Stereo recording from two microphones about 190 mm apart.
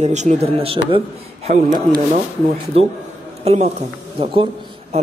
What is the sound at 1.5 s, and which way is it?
Speech, 40° right (ahead or behind).